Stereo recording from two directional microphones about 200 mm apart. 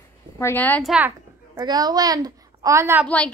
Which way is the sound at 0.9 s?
10° right (ahead or behind).